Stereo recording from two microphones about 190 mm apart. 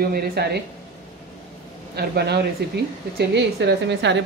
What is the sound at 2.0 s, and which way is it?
Speech, 60° right (ahead or behind).